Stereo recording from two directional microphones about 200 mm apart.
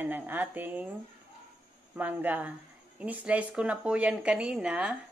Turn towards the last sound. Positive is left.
turn(degrees=-5)  # may be behind; listen again after turning